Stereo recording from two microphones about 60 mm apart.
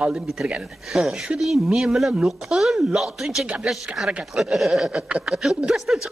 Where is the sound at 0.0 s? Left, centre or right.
Centre.